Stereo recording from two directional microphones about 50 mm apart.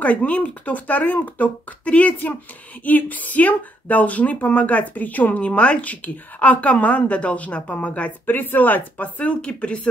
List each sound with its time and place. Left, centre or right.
0.0 s speech: left